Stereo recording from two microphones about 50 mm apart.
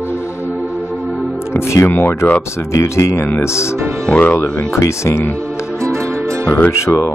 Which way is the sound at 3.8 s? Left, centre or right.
Right.